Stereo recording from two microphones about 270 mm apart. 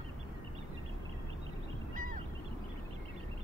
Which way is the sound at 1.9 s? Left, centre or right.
Right.